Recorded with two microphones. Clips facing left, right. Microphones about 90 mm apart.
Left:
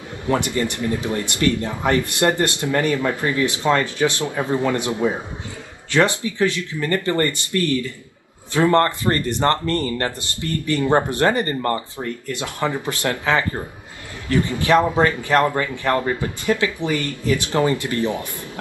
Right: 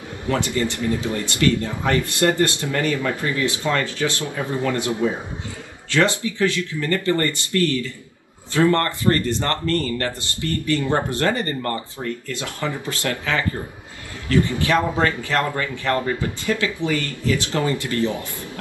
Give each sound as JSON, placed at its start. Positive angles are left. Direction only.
{"t": 0.3, "sound": "speech", "side_deg": 20}
{"t": 6.3, "sound": "speech", "side_deg": 20}